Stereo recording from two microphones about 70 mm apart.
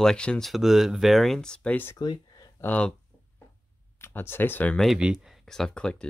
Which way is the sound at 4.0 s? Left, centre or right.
Left.